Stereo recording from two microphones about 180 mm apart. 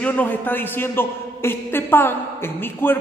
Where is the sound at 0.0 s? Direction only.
10° left (ahead or behind).